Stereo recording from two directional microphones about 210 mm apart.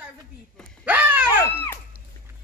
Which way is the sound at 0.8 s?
10° right (ahead or behind).